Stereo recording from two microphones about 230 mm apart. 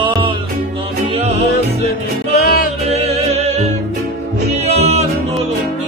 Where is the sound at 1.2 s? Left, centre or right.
Right.